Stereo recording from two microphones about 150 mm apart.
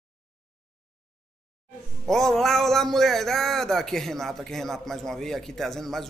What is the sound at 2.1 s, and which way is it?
Speech, centre (ahead or behind).